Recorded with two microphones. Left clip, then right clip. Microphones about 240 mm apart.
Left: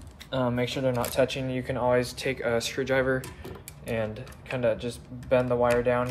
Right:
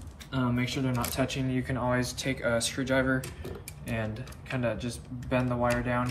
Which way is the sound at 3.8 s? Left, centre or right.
Left.